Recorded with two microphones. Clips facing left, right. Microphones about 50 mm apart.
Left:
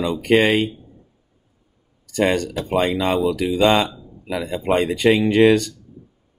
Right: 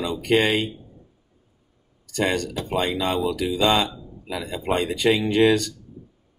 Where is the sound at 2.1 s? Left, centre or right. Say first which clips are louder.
Left 4 dB; left.